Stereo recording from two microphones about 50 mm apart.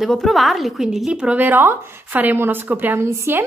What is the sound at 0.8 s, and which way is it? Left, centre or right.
Speech, centre.